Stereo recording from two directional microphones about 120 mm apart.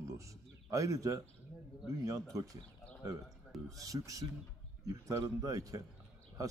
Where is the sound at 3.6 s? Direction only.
30° right (ahead or behind).